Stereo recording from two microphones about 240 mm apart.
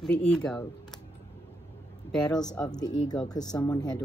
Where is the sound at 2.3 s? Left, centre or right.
Centre.